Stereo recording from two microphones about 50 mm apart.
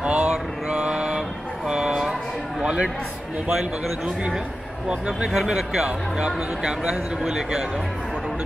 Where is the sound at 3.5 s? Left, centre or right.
Centre.